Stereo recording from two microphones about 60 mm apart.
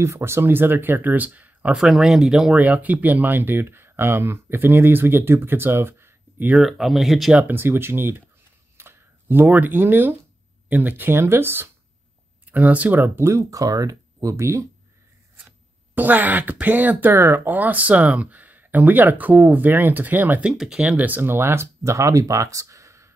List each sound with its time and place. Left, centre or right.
0.0 s speech: right
1.8 s speech: centre
2.5 s speech: right
6.6 s speech: centre
7.5 s speech: right
8.7 s a sound: right
10.7 s speech: right
12.4 s speech: right
13.0 s speech: right
13.3 s speech: right
14.3 s speech: right
15.9 s speech: right
20.5 s speech: centre
20.8 s speech: right